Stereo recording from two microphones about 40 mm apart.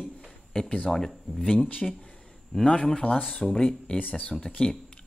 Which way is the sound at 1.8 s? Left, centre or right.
Left.